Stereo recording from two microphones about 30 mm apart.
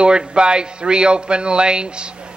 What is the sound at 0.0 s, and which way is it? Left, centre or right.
Speech, right.